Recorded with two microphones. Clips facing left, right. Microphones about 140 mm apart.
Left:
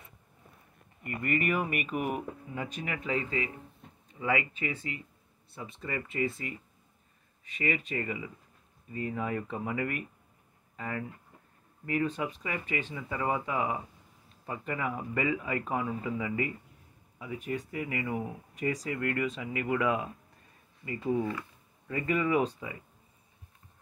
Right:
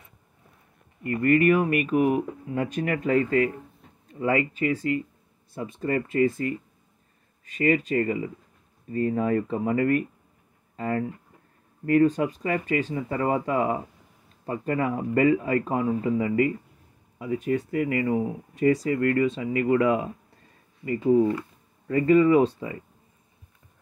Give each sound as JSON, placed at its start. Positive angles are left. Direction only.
{"t": 1.1, "sound": "speech", "side_deg": -45}
{"t": 2.5, "sound": "speech", "side_deg": -55}
{"t": 7.5, "sound": "speech", "side_deg": -40}
{"t": 18.1, "sound": "speech", "side_deg": -25}